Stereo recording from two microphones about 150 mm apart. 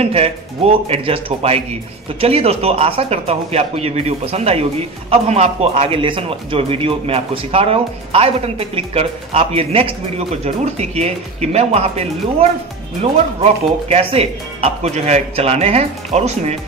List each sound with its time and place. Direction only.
0.0 s a man's voice: 40° right (ahead or behind)